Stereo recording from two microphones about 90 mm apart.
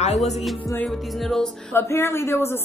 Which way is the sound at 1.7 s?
30° left (ahead or behind).